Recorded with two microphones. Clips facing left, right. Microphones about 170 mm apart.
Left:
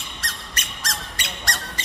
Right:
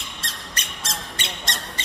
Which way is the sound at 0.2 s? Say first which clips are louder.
Left 1 dB; 25° right (ahead or behind).